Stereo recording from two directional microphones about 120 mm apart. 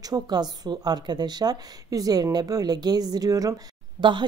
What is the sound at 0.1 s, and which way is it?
A woman's voice, 35° right (ahead or behind).